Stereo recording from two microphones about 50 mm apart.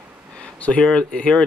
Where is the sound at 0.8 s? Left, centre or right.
Centre.